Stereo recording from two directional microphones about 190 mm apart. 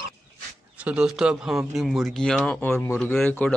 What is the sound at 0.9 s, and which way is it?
Speech, 5° right (ahead or behind).